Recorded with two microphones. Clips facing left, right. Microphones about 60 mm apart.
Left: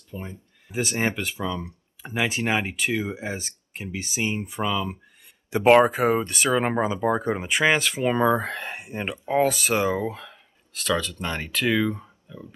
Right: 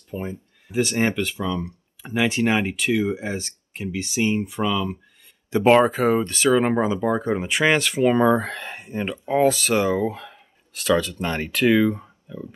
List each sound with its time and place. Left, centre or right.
0.1 s speech: right
0.7 s speech: centre
7.4 s speech: centre
8.6 s speech: centre
9.5 s speech: centre
10.0 s speech: centre